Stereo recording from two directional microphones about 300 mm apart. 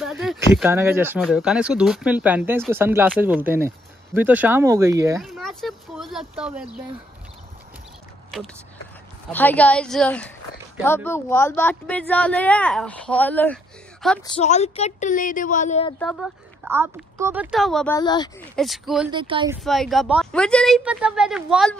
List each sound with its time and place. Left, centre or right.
0.0 s speech: centre
5.2 s speech: centre
9.3 s speech: centre
14.2 s speech: centre
16.0 s speech: centre
18.6 s speech: centre
19.1 s speech: centre
19.6 s speech: centre